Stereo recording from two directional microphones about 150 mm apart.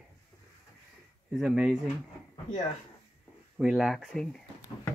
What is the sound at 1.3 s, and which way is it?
Speech, 5° right (ahead or behind).